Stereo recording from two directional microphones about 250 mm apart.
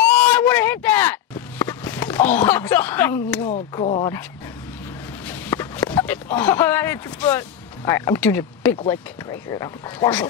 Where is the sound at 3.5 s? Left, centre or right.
Left.